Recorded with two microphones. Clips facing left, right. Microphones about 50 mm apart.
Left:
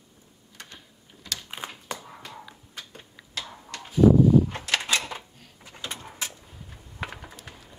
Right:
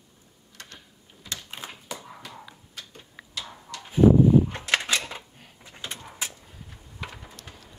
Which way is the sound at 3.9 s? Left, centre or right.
Right.